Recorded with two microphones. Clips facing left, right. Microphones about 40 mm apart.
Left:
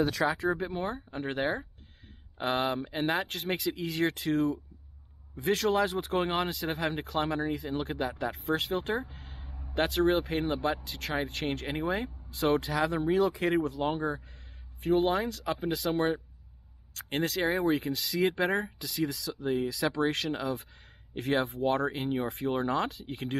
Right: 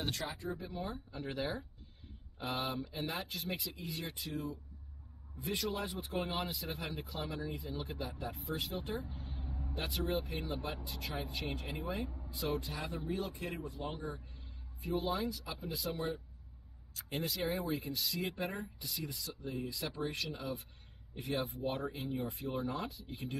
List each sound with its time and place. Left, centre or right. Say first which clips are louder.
0.4 s speech: left 11 dB; left